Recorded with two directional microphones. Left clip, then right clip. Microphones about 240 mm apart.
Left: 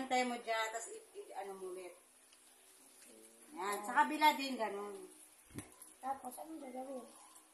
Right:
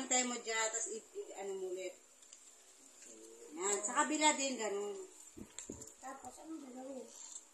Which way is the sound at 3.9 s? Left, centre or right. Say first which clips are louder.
Left 3 dB; centre.